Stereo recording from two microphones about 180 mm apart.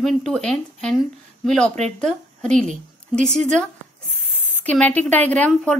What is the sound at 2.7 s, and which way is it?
Speech, 40° right (ahead or behind).